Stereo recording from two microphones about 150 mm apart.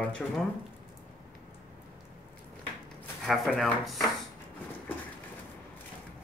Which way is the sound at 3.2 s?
Centre (ahead or behind).